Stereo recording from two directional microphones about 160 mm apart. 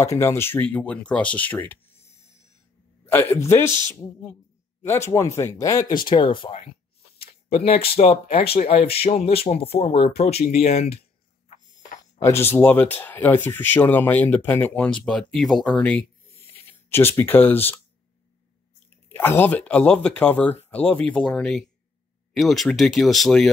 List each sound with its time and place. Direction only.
0.0 s speech: 15° left (ahead or behind)
3.1 s speech: 15° left (ahead or behind)
4.8 s speech: 15° left (ahead or behind)
5.9 s speech: 30° left (ahead or behind)
12.2 s speech: 15° left (ahead or behind)
19.0 s speech: 10° left (ahead or behind)